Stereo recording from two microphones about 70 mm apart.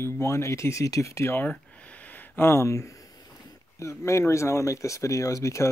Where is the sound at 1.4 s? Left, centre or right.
Centre; by 2.9 s left.